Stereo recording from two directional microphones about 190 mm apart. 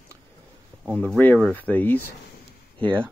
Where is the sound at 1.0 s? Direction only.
10° left (ahead or behind).